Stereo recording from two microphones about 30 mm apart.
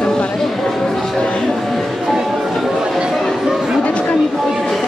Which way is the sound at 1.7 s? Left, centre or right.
Centre.